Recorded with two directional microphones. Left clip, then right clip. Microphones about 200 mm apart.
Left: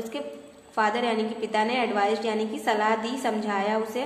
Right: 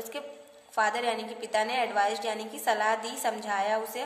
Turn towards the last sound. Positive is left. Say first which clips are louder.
# left 2 dB
turn(degrees=-25)  # may be behind; listen again after turning